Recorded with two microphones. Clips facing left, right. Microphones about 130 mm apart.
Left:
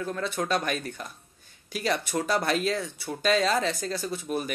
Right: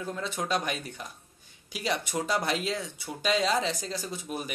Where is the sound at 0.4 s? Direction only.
15° right (ahead or behind).